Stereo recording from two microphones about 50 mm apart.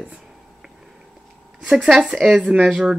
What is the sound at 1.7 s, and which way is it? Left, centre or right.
Speech, centre.